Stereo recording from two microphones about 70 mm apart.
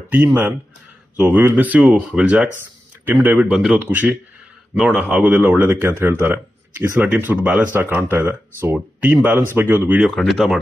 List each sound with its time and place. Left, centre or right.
0.1 s speech: right
3.5 s speech: centre
3.8 s speech: right
4.7 s speech: centre
5.2 s speech: right
8.7 s speech: centre
10.1 s speech: centre